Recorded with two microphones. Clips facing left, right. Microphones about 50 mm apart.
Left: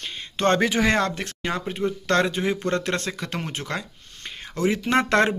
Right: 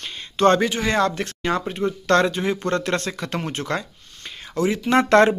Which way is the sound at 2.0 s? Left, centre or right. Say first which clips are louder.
Right 4 dB; centre.